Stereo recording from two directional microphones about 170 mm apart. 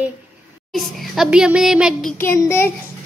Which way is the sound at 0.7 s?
Centre (ahead or behind).